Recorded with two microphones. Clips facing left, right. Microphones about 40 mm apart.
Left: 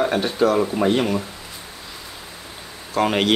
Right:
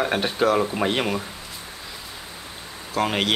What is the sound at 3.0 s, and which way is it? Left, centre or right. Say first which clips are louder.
Speech: left 4 dB; centre.